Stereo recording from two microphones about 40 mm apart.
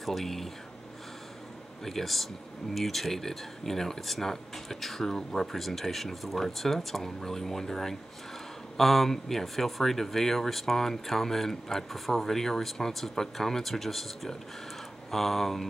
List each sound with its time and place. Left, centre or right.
0.0 s speech: centre
1.9 s speech: centre